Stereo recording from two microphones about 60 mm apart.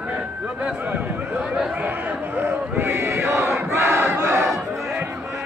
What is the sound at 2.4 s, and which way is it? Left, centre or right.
Battle cry, right.